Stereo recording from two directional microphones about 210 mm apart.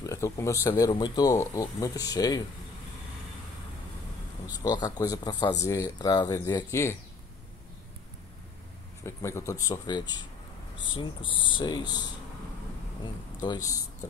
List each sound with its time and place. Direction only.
0.0 s speech: 15° left (ahead or behind)
4.5 s speech: 20° left (ahead or behind)
9.0 s speech: 15° left (ahead or behind)